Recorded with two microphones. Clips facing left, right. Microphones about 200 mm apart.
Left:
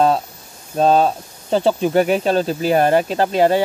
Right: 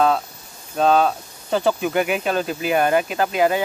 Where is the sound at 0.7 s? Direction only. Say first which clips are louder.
Left 2 dB; 35° left (ahead or behind).